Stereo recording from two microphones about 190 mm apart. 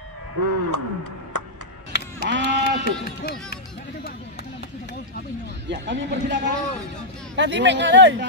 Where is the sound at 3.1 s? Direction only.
55° left (ahead or behind).